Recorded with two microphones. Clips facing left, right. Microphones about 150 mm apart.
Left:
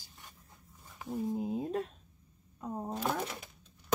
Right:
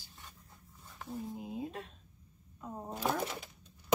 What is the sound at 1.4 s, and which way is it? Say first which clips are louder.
Speech: left 7 dB; 45° left (ahead or behind).